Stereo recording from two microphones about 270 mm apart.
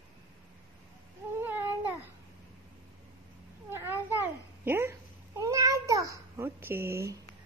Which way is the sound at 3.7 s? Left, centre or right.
Centre.